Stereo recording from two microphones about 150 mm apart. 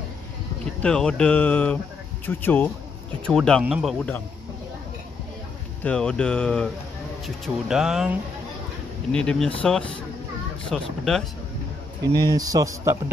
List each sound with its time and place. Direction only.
0.8 s speech: 5° left (ahead or behind)
5.9 s speech: 5° left (ahead or behind)
12.0 s speech: 25° right (ahead or behind)